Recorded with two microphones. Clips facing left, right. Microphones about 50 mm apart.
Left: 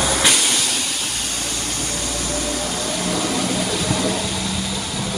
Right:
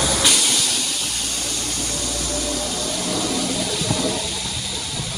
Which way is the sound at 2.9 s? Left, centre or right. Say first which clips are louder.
Left 2 dB; left.